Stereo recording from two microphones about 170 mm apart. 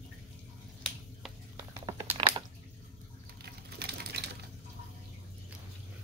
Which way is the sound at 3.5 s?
70° right (ahead or behind).